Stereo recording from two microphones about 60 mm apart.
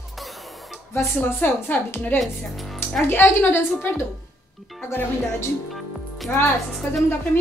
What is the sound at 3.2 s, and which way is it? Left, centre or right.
Speech, left.